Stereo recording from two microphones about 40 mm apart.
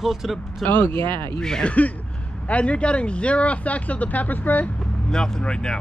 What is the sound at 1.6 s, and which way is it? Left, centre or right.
Speech, left.